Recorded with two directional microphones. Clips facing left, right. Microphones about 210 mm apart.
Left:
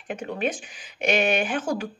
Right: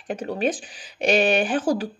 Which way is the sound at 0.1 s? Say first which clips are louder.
Right 3 dB; 35° right (ahead or behind).